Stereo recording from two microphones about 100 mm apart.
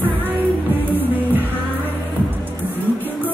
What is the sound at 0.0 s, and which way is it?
Music, 20° right (ahead or behind).